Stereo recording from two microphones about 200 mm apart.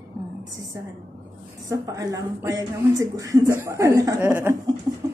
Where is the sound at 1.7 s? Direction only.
15° right (ahead or behind).